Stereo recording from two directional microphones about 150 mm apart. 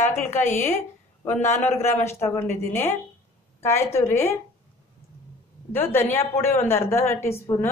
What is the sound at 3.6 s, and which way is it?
Speech, 15° left (ahead or behind).